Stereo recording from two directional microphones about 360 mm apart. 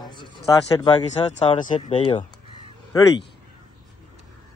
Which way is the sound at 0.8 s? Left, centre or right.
Centre.